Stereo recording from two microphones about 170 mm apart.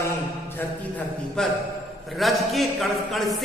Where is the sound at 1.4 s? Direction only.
5° left (ahead or behind).